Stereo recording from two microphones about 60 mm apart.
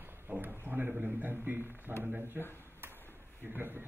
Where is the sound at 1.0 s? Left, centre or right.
Right.